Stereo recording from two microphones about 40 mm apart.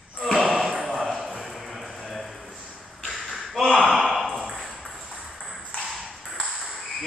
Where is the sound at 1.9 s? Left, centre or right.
Centre.